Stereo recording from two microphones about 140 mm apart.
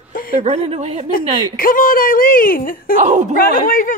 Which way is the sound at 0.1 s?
90° left.